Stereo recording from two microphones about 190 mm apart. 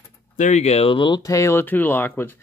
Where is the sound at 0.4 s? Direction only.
35° left (ahead or behind).